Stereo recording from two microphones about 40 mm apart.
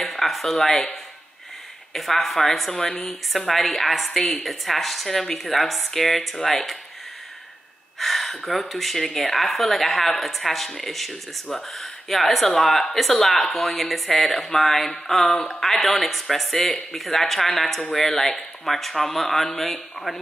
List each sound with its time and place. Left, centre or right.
0.0 s a sound: centre
2.0 s speech: centre
8.0 s speech: centre
15.2 s speech: left
15.6 s speech: centre